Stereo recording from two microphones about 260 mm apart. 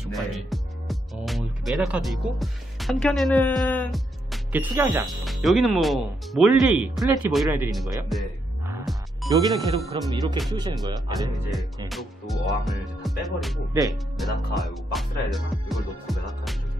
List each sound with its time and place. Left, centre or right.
0.0 s speech: centre
8.1 s music: centre
9.3 s speech: centre
11.9 s speech: centre